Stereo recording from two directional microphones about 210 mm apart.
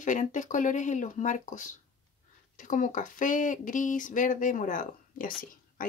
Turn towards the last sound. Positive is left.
turn(degrees=40)  # may be behind; listen again after turning